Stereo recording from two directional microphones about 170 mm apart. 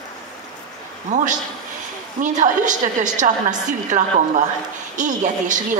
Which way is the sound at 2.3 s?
45° right (ahead or behind).